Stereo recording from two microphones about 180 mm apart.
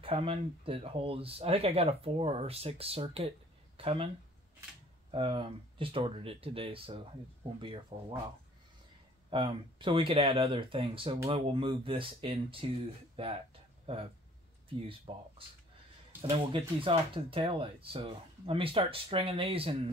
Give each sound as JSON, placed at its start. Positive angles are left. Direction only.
{"t": 0.0, "sound": "speech", "side_deg": -30}
{"t": 5.1, "sound": "speech", "side_deg": -30}
{"t": 9.3, "sound": "speech", "side_deg": -25}
{"t": 15.1, "sound": "speech", "side_deg": -30}